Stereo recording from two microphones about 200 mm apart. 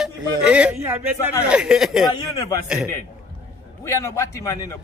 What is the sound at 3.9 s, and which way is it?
Speech, 15° left (ahead or behind).